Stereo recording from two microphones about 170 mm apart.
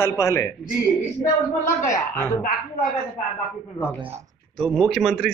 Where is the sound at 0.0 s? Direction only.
15° left (ahead or behind).